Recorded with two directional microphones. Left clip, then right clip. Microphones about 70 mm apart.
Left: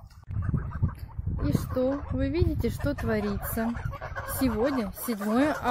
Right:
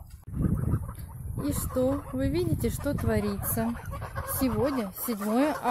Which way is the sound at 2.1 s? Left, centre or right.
Centre.